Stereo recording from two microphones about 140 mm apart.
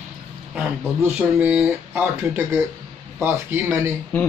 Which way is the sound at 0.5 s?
10° right (ahead or behind).